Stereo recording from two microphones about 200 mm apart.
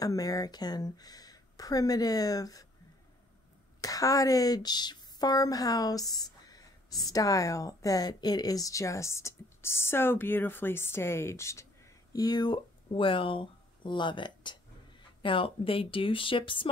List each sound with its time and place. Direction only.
0.0 s speech: 20° left (ahead or behind)
3.8 s a woman's voice: 15° left (ahead or behind)